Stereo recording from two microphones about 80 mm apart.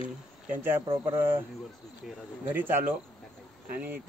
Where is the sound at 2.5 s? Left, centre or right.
Right.